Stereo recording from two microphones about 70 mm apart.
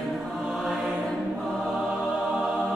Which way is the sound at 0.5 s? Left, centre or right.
Centre.